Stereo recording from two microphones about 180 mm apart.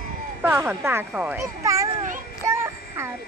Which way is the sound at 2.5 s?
15° right (ahead or behind).